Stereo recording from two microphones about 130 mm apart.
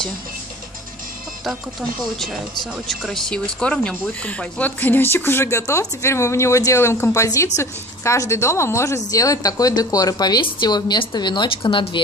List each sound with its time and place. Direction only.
1.4 s speech: centre (ahead or behind); by 12.0 s 40° left (ahead or behind)